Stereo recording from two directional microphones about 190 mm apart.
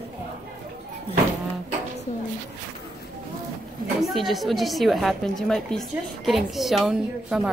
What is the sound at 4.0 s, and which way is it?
A woman's voice, centre (ahead or behind).